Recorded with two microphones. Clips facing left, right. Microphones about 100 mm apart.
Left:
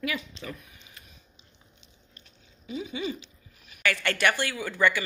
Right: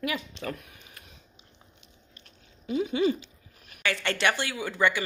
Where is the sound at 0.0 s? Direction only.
55° right (ahead or behind).